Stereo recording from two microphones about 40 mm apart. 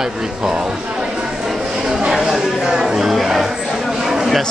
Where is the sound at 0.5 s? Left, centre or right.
Right; by 2.6 s centre.